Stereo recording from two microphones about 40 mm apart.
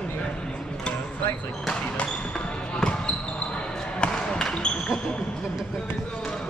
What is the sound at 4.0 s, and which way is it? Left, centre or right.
Basketball bounce, left.